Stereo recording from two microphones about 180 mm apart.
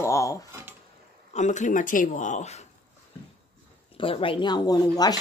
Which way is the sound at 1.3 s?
40° left (ahead or behind).